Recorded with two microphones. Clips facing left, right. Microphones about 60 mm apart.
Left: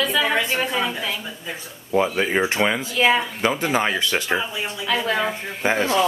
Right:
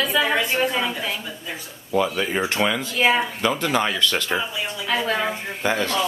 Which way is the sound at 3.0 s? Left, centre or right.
Centre.